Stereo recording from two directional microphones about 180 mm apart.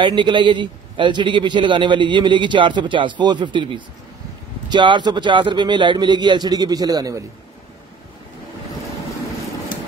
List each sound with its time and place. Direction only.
0.0 s a man's voice: 25° right (ahead or behind)